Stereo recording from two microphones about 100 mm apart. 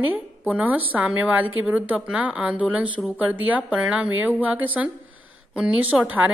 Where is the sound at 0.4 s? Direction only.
15° right (ahead or behind).